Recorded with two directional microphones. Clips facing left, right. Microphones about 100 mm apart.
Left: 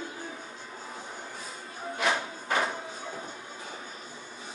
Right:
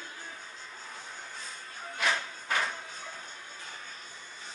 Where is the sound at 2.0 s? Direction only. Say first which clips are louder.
Left 3 dB; 20° left (ahead or behind).